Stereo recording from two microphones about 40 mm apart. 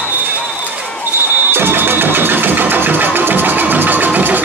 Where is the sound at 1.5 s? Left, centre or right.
Right.